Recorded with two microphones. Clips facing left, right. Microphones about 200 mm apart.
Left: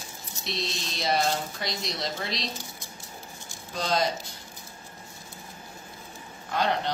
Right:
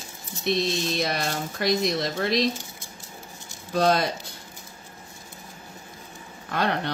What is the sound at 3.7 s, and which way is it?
Speech, 60° right (ahead or behind).